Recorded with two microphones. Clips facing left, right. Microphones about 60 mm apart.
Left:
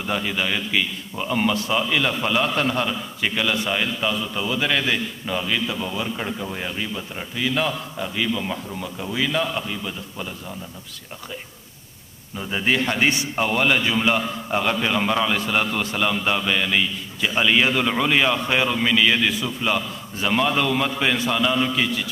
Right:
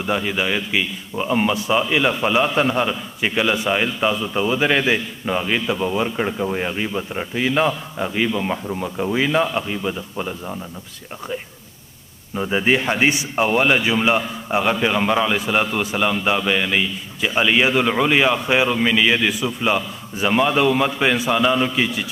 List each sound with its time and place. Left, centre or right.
0.0 s a man's voice: centre
12.4 s a man's voice: right